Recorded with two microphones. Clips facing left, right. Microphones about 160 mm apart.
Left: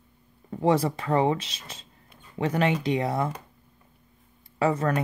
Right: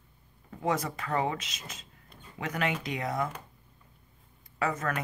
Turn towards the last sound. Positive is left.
turn(degrees=30)  # may be behind; listen again after turning